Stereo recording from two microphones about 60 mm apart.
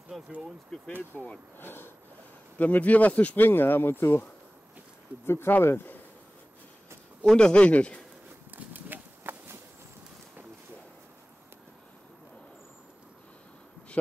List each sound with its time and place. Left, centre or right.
0.1 s a sound: centre
0.7 s speech: centre
1.6 s speech: left
2.6 s speech: left
5.2 s speech: left
7.2 s speech: centre
8.5 s horse: right